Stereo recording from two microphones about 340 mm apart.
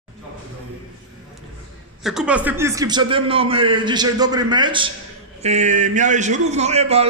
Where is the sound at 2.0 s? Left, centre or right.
Centre.